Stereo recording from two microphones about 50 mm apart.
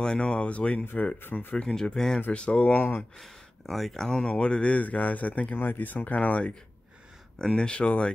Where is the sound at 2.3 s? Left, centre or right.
Left.